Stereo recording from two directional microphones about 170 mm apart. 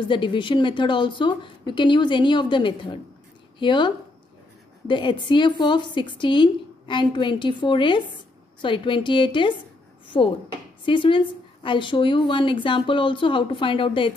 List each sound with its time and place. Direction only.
0.0 s a woman's voice: 30° left (ahead or behind)